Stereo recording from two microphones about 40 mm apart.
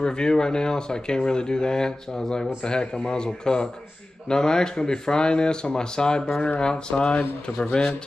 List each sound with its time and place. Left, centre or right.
0.0 s speech: centre